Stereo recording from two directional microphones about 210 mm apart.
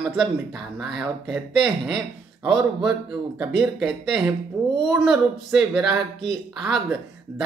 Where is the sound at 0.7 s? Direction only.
Centre (ahead or behind).